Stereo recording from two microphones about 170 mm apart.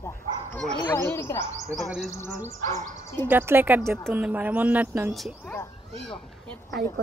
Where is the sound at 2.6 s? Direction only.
45° right (ahead or behind).